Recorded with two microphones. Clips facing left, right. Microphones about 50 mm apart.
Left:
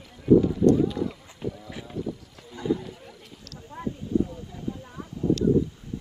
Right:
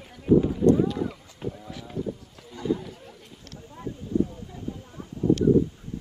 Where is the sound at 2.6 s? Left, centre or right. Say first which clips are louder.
Even; centre.